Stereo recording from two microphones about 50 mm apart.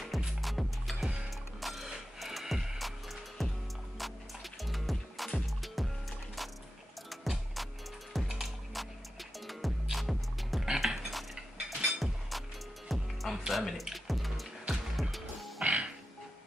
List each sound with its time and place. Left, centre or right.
0.4 s music: centre
7.1 s music: centre
10.7 s music: centre
11.0 s music: centre
15.6 s music: right